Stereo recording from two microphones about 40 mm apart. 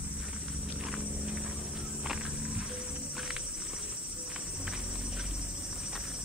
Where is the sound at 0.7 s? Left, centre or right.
Centre.